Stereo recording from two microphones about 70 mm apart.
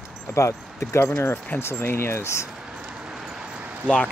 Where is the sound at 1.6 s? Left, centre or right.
Left.